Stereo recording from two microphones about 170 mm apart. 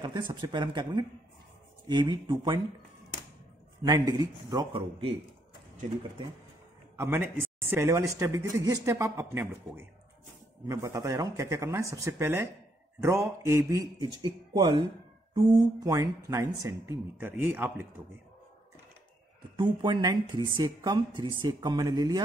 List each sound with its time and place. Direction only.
0.0 s a woman's voice: 25° right (ahead or behind)
3.8 s a woman's voice: 20° right (ahead or behind)
7.0 s a man's voice: 15° right (ahead or behind)
19.5 s a woman's voice: 25° right (ahead or behind)